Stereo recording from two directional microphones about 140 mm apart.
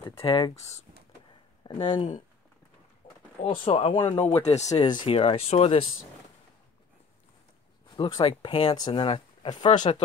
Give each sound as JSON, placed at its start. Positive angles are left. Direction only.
{"t": 0.0, "sound": "speech", "side_deg": 40}
{"t": 3.0, "sound": "a sound", "side_deg": 35}
{"t": 3.4, "sound": "speech", "side_deg": 35}
{"t": 4.6, "sound": "speech", "side_deg": 30}
{"t": 7.9, "sound": "speech", "side_deg": 35}
{"t": 9.7, "sound": "speech", "side_deg": 50}